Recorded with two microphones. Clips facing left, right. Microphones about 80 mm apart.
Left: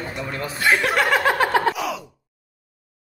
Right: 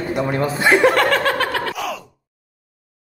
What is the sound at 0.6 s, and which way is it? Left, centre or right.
Speech, centre.